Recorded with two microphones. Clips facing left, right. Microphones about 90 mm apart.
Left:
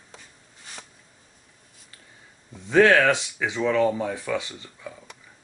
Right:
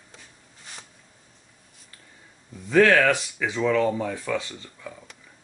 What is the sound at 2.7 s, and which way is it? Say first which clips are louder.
Speech: left 1 dB; 25° left (ahead or behind).